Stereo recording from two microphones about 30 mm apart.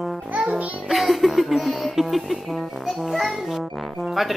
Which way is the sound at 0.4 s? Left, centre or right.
Right.